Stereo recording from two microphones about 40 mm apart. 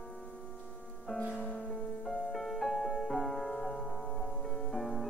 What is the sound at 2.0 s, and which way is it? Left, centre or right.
Music, centre.